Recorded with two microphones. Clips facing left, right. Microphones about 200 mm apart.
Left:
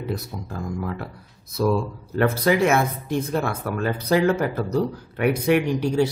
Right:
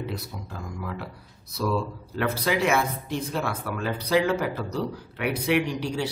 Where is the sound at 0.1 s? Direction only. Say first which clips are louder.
Left 6 dB; 45° left (ahead or behind).